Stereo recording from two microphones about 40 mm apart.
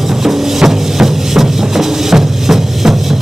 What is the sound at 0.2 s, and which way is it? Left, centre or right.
Music, centre.